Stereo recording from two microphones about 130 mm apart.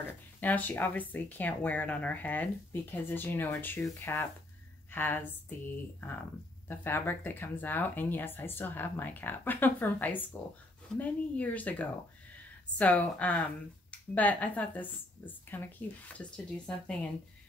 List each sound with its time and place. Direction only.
0.0 s a woman's voice: 15° left (ahead or behind)
6.8 s speech: 15° left (ahead or behind)